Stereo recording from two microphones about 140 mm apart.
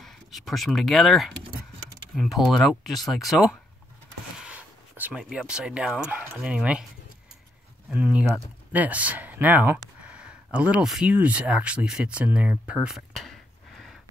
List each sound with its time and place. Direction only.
0.0 s speech: centre (ahead or behind)
4.4 s a sound: 10° right (ahead or behind)
5.5 s speech: 5° right (ahead or behind)
7.9 s speech: 10° right (ahead or behind)